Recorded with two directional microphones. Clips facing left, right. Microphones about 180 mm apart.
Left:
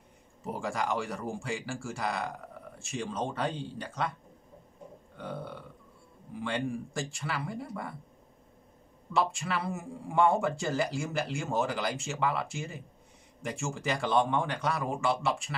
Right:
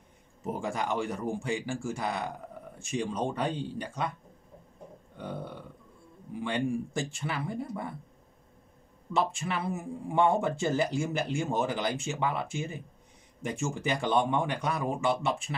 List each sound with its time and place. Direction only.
0.4 s speech: 20° right (ahead or behind)
5.1 s burping: 20° right (ahead or behind)
6.4 s speech: 20° right (ahead or behind)
9.1 s speech: 20° right (ahead or behind)